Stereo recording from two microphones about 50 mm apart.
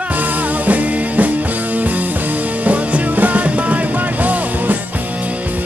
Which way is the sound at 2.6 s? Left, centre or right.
Right.